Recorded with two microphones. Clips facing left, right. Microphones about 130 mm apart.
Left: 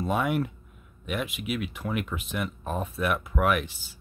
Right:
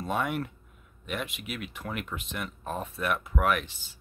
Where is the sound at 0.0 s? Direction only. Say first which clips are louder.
Left 4 dB; 5° left (ahead or behind).